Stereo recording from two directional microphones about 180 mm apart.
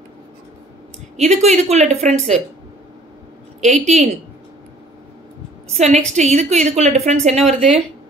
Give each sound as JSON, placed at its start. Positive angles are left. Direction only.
{"t": 1.1, "sound": "a woman's voice", "side_deg": -40}
{"t": 3.6, "sound": "a woman's voice", "side_deg": -40}
{"t": 5.7, "sound": "a woman's voice", "side_deg": -40}